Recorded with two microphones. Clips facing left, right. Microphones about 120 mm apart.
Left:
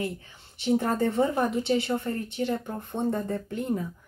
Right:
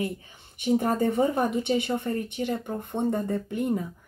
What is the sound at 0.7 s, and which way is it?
Speech, 15° right (ahead or behind).